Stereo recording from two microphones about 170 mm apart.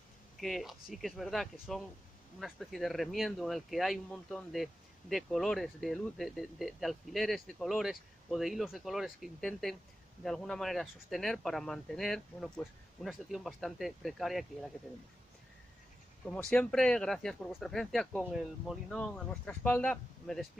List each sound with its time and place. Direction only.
0.4 s speech: centre (ahead or behind)
16.3 s speech: 5° left (ahead or behind)